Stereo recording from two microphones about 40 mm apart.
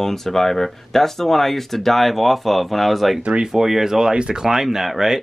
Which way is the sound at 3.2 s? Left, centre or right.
Right.